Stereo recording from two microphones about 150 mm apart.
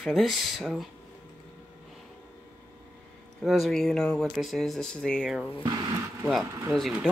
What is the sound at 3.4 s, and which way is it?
Speech, centre (ahead or behind).